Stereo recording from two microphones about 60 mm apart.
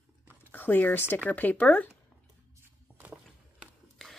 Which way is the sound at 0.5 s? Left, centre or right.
Left.